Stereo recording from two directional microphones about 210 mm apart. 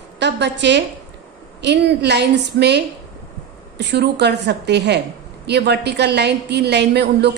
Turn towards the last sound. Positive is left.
turn(degrees=-50)  # may be behind; listen again after turning